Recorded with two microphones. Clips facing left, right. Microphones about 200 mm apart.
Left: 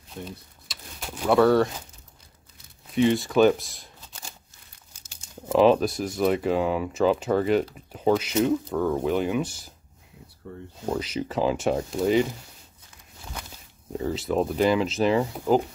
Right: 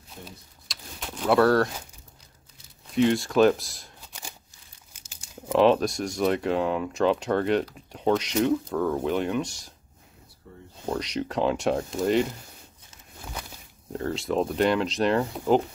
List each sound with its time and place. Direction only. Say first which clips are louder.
0.7 s a sound: even; 5° left (ahead or behind)
2.9 s speech: left 1 dB; centre (ahead or behind)
5.5 s speech: left 1 dB; centre (ahead or behind)
10.4 s a sound: left 8 dB; 65° left (ahead or behind)
10.9 s speech: left 1 dB; 5° left (ahead or behind)
13.9 s speech: left 1 dB; centre (ahead or behind)